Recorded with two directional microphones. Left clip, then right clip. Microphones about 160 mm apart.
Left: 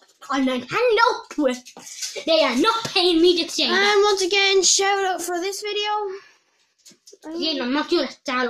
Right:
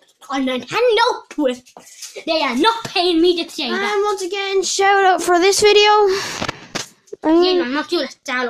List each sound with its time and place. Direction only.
0.3 s speech: 25° right (ahead or behind)
2.2 s a child's voice: 50° right (ahead or behind)
3.7 s speech: 15° left (ahead or behind)
4.6 s speech: 25° right (ahead or behind)
4.8 s a child's voice: 40° right (ahead or behind); by 6.2 s 60° right (ahead or behind)
7.3 s speech: centre (ahead or behind)